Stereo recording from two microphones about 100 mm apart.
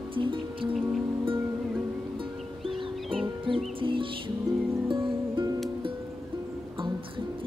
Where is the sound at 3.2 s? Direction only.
60° right (ahead or behind).